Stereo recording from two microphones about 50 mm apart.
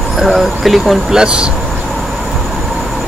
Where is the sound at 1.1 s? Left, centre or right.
Centre.